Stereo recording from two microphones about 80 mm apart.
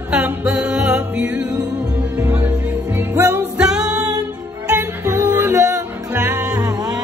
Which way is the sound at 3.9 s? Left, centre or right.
Right.